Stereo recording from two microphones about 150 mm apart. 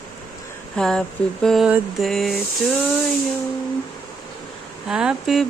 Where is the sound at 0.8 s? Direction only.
5° left (ahead or behind).